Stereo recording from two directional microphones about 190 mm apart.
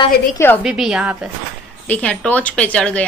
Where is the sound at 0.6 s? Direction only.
5° right (ahead or behind).